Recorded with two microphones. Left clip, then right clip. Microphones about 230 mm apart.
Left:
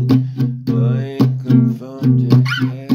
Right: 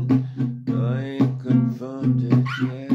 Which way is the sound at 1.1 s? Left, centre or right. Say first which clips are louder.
Left 5 dB; left.